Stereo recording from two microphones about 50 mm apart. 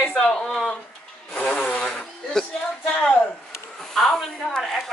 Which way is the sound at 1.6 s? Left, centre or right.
Centre.